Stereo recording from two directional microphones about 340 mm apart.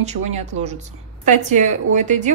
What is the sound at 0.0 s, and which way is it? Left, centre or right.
A woman's voice, centre.